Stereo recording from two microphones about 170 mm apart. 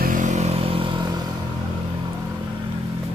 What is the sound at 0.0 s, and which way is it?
Vehicle, 50° right (ahead or behind).